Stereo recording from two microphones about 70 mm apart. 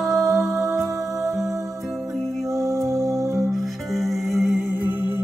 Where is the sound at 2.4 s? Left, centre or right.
Right.